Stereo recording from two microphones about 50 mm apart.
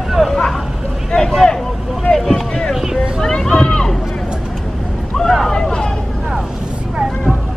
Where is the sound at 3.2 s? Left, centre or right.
Centre.